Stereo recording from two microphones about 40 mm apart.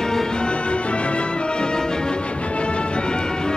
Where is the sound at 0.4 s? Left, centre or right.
Left.